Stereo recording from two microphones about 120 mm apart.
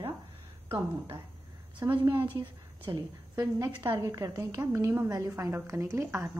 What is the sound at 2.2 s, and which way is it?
Speech, 45° right (ahead or behind).